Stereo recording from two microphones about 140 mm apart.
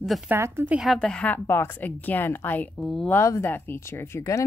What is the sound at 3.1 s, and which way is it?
Speech, 20° left (ahead or behind).